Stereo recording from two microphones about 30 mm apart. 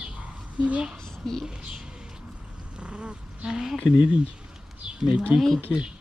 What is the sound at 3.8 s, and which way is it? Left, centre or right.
Speech, right.